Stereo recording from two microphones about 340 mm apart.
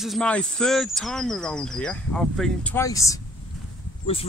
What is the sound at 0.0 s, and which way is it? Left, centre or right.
Speech, centre.